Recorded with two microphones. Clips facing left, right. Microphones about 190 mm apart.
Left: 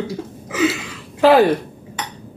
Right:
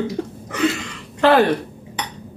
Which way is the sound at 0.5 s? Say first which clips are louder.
Left 1 dB; 5° left (ahead or behind).